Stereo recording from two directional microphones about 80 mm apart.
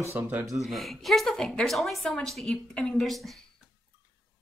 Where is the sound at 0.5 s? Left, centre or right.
Centre.